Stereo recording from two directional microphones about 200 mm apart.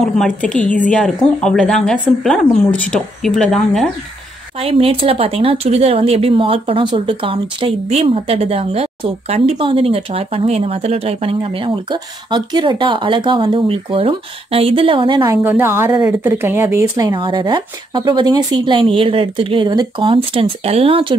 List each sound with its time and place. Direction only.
0.0 s speech: 5° left (ahead or behind)
4.6 s speech: 30° right (ahead or behind)
15.4 s a woman's voice: 10° right (ahead or behind); by 21.2 s 25° right (ahead or behind)